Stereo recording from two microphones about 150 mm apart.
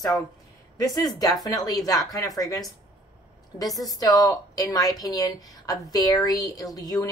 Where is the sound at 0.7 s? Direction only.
25° left (ahead or behind).